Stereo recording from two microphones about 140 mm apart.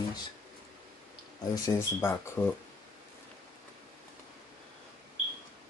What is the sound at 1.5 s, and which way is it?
Speech, 20° left (ahead or behind).